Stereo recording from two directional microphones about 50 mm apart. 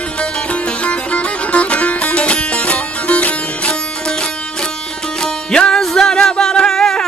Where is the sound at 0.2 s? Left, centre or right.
Left.